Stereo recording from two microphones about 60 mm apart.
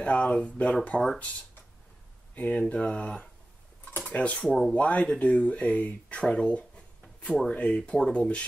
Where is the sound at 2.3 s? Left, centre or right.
Left.